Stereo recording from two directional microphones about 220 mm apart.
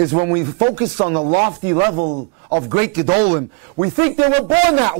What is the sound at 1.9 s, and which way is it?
A man's voice, 35° right (ahead or behind).